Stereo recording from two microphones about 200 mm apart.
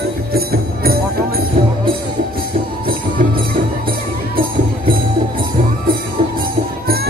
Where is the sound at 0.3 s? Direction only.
50° right (ahead or behind).